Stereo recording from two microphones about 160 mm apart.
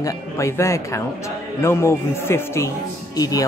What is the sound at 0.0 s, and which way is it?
A man's voice, 15° left (ahead or behind).